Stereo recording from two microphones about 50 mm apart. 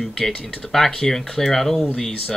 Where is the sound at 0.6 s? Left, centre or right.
Centre.